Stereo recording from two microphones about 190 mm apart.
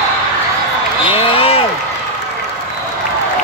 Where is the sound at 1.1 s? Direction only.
30° left (ahead or behind).